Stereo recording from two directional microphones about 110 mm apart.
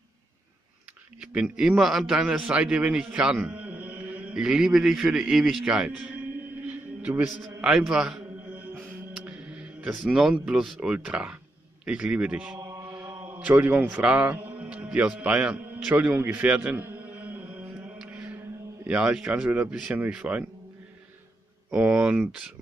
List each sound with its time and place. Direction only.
1.2 s a man's voice: 10° right (ahead or behind)
6.7 s music: 10° right (ahead or behind)
11.8 s speech: 10° right (ahead or behind)
12.5 s chant: 25° right (ahead or behind)
13.2 s a man's voice: 15° right (ahead or behind)
17.9 s music: 10° right (ahead or behind)
18.9 s speech: 10° right (ahead or behind)
21.6 s speech: 10° right (ahead or behind)